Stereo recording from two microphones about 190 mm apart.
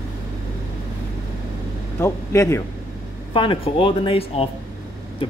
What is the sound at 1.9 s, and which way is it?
Speech, 15° left (ahead or behind).